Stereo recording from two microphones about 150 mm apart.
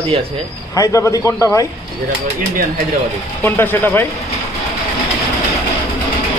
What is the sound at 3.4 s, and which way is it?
Speech, 15° left (ahead or behind).